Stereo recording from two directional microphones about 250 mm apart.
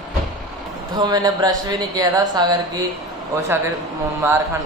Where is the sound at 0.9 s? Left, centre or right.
Centre.